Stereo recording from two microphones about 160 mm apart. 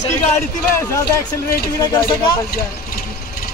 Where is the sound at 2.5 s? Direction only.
70° left (ahead or behind).